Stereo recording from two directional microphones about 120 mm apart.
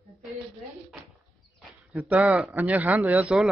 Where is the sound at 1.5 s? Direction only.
15° right (ahead or behind).